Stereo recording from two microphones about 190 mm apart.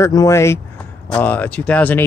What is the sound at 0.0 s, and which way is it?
Speech, 15° left (ahead or behind).